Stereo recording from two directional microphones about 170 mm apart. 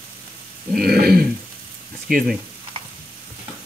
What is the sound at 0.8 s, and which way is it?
Speech, 65° right (ahead or behind).